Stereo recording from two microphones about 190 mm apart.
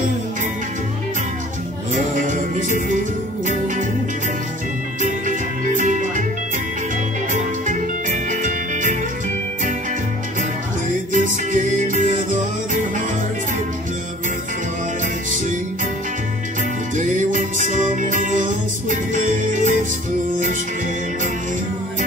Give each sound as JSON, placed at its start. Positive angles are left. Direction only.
{"t": 2.1, "sound": "music", "side_deg": -45}
{"t": 5.0, "sound": "music", "side_deg": -45}
{"t": 7.3, "sound": "music", "side_deg": -40}
{"t": 11.1, "sound": "music", "side_deg": -40}
{"t": 16.9, "sound": "music", "side_deg": -45}